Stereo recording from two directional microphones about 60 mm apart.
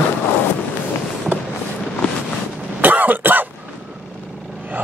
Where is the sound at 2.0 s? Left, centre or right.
Centre.